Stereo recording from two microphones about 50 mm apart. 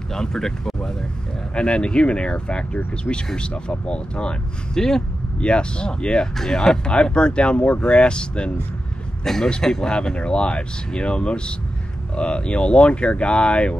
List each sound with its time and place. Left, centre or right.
0.1 s speech: centre
1.5 s speech: left
9.2 s a man's voice: centre